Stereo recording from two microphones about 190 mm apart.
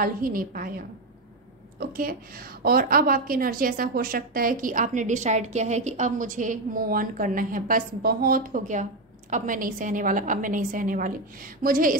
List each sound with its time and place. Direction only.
0.0 s a woman's voice: 50° right (ahead or behind)